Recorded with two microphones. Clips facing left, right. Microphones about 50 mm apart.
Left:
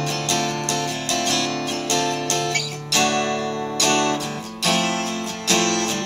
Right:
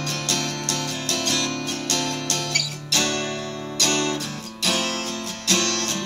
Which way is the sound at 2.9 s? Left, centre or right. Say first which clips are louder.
Left 4 dB; left.